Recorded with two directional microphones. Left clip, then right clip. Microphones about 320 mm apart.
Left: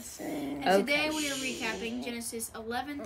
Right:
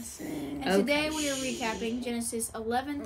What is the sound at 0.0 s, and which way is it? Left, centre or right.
Dog, centre.